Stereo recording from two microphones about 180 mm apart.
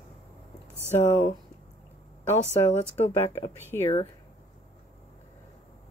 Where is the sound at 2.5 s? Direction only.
35° left (ahead or behind).